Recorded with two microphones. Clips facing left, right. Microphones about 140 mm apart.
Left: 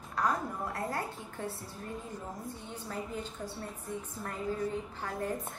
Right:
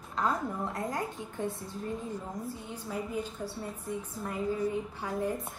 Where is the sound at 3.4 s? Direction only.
10° right (ahead or behind).